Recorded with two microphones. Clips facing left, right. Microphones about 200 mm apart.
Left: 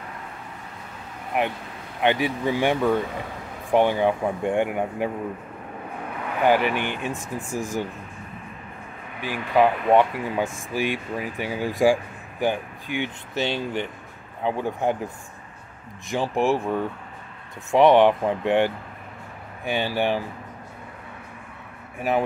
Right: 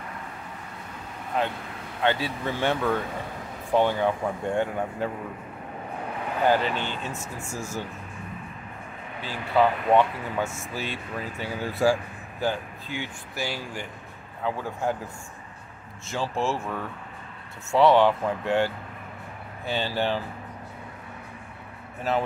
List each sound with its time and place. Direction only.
1.3 s speech: 15° left (ahead or behind)
6.4 s speech: 15° left (ahead or behind)
9.2 s speech: 15° left (ahead or behind)
16.1 s speech: 15° left (ahead or behind)
22.1 s speech: 15° left (ahead or behind)